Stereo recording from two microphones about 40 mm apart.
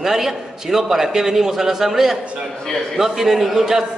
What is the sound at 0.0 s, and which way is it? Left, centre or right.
A man's voice, centre.